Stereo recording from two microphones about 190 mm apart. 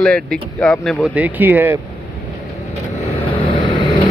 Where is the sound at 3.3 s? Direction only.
25° left (ahead or behind).